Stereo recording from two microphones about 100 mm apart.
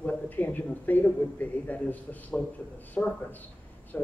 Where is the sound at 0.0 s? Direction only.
15° left (ahead or behind).